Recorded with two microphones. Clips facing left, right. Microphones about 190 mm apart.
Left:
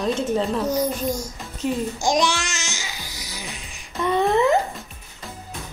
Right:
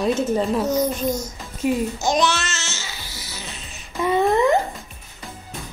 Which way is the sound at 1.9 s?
15° left (ahead or behind).